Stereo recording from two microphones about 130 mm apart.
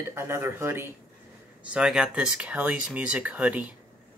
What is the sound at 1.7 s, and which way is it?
Speech, 5° right (ahead or behind).